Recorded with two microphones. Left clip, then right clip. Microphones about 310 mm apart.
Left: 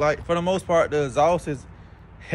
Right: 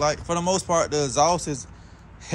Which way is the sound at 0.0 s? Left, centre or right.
Centre.